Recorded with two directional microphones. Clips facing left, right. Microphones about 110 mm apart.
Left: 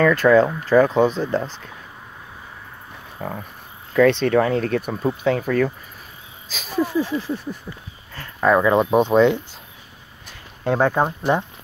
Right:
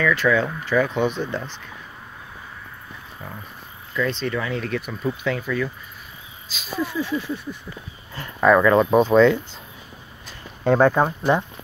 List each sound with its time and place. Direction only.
0.0 s speech: 45° left (ahead or behind)
3.2 s speech: 60° left (ahead or behind)
4.5 s speech: 40° left (ahead or behind)
8.5 s speech: 20° left (ahead or behind)
10.6 s speech: 5° left (ahead or behind)
11.0 s speech: 15° left (ahead or behind)